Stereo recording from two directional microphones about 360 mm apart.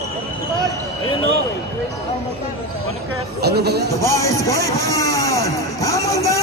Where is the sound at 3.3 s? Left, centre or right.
Right.